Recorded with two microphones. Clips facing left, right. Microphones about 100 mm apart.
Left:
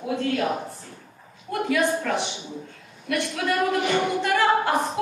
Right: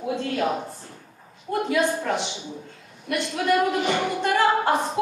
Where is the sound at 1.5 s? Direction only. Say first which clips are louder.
Even; 30° right (ahead or behind).